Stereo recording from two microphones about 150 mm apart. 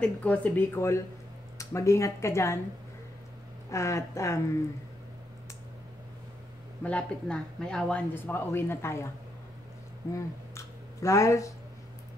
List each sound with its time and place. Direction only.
0.0 s speech: 10° left (ahead or behind)
3.7 s speech: 20° left (ahead or behind)
6.8 s speech: 10° left (ahead or behind)
10.1 s a sound: 20° left (ahead or behind)